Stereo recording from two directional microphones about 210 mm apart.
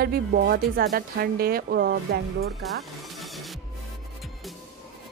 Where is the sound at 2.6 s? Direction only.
Centre (ahead or behind).